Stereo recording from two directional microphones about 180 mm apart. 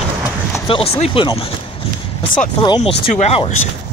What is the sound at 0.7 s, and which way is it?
Speech, 35° left (ahead or behind).